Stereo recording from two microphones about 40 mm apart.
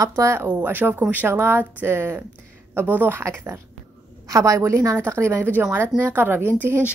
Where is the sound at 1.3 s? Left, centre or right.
Right.